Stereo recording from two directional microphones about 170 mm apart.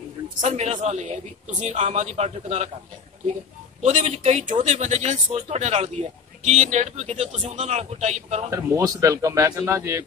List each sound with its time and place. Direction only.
0.5 s a man's voice: 40° right (ahead or behind)
3.8 s a man's voice: 45° right (ahead or behind)
8.5 s a man's voice: 20° right (ahead or behind)